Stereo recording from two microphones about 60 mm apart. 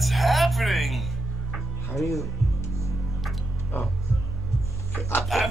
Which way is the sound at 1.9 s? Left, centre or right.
Left.